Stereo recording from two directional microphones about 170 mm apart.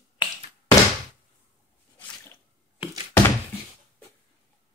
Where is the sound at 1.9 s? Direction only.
10° left (ahead or behind).